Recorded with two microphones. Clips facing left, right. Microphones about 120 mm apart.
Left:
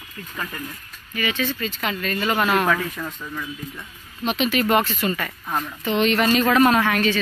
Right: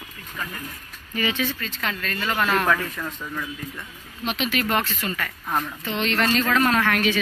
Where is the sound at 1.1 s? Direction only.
25° right (ahead or behind).